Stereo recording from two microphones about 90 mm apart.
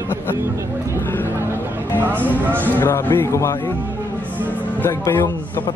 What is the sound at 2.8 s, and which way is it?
Speech, 25° left (ahead or behind).